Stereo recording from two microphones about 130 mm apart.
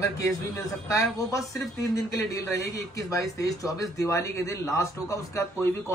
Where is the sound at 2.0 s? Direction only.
25° left (ahead or behind).